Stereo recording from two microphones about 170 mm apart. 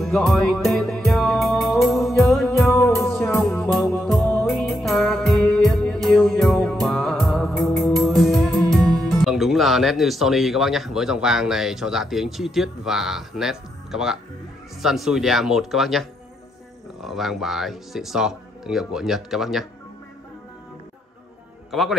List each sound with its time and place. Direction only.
0.0 s music: centre (ahead or behind)
2.7 s music: 15° left (ahead or behind)
3.0 s music: centre (ahead or behind)
8.7 s speech: centre (ahead or behind)